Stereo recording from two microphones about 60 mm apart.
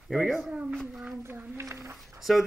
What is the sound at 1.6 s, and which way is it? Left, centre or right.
Speech, right.